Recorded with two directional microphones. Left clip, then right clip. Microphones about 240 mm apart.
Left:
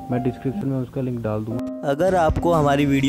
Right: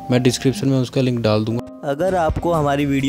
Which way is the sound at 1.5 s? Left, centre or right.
Centre.